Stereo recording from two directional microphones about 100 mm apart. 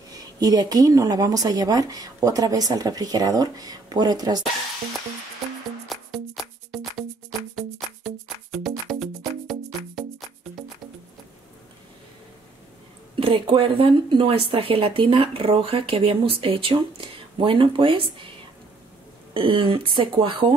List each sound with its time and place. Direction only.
0.1 s a woman's voice: 40° right (ahead or behind)
5.9 s music: centre (ahead or behind)
13.1 s speech: 60° right (ahead or behind)
19.3 s speech: 60° right (ahead or behind)